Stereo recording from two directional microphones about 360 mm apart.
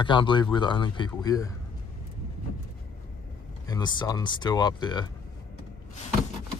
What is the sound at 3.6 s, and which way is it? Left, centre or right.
Speech, centre.